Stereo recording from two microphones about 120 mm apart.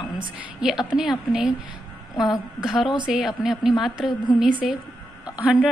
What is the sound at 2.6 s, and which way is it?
A woman's voice, 5° right (ahead or behind).